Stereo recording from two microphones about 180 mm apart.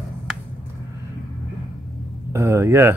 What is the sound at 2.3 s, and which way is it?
Speech, 15° right (ahead or behind).